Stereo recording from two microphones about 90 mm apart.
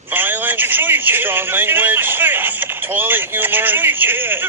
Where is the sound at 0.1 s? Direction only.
20° right (ahead or behind).